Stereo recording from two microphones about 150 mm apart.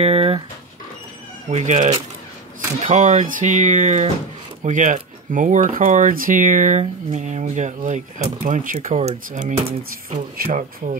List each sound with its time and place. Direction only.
0.0 s speech: 40° right (ahead or behind)
1.5 s speech: 55° right (ahead or behind)
6.8 s speech: 50° right (ahead or behind)